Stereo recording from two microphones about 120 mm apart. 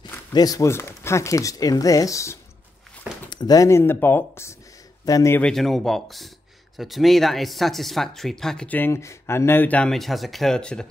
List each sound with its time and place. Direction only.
0.3 s speech: 30° left (ahead or behind)
5.4 s speech: 5° left (ahead or behind)